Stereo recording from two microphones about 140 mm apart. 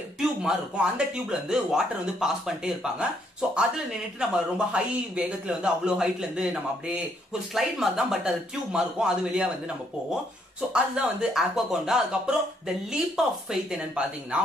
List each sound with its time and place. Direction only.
0.2 s speech: 5° right (ahead or behind)
10.7 s speech: 5° right (ahead or behind)